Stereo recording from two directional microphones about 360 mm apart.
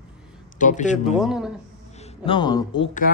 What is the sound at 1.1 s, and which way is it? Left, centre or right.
Speech, centre.